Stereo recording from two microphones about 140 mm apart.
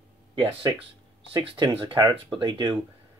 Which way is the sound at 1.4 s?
35° right (ahead or behind).